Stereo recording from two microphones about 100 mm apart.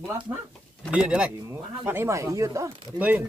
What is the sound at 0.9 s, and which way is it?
Speech, 10° right (ahead or behind).